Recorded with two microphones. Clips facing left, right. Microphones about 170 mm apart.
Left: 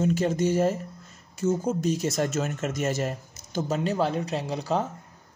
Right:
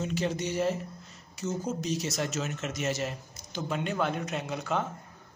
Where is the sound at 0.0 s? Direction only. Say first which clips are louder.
Left 7 dB; 50° left (ahead or behind).